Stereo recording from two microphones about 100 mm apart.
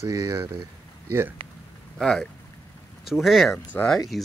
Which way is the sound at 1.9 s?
5° left (ahead or behind).